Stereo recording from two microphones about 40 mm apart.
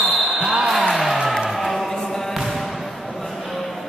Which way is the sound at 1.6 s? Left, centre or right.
Centre.